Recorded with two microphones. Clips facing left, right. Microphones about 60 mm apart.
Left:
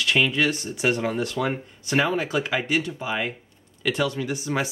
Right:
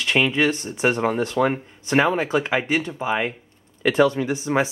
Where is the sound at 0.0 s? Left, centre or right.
Right.